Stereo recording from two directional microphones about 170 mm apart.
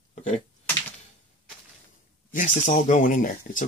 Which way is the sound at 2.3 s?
50° left (ahead or behind).